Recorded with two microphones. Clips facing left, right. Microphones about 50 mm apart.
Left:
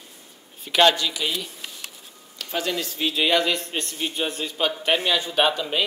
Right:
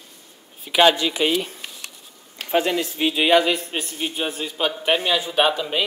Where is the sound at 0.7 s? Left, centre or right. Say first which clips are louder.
Right 2 dB; centre.